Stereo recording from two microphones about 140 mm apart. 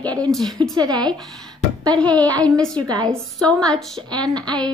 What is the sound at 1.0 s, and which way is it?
Speech, centre (ahead or behind).